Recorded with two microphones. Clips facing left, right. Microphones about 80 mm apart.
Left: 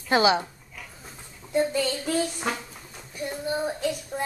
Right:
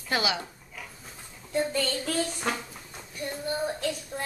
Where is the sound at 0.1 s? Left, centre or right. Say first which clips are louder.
Left 8 dB; left.